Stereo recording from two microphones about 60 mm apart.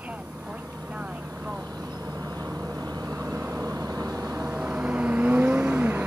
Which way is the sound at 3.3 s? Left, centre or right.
Right.